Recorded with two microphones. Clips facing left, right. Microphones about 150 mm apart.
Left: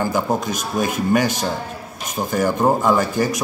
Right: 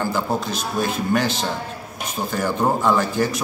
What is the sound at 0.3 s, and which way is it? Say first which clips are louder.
Speech: left 2 dB; 15° left (ahead or behind).